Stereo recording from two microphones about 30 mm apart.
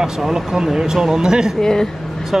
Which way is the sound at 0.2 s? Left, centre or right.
Centre.